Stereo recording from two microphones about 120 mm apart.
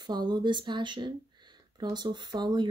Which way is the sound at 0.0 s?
35° right (ahead or behind).